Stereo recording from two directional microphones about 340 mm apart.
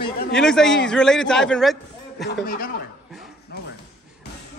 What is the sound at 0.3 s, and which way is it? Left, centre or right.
Speech, centre.